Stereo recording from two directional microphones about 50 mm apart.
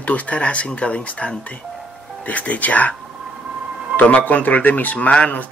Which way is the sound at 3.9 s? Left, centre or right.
Left.